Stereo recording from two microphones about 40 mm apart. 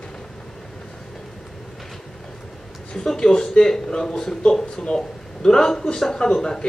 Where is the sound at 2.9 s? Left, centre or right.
Centre.